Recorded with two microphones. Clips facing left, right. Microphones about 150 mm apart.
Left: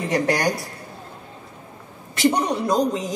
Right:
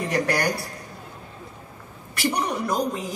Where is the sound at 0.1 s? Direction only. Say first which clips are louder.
Left 3 dB; 20° left (ahead or behind).